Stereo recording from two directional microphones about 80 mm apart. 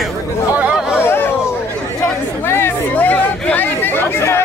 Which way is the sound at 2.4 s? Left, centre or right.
Left.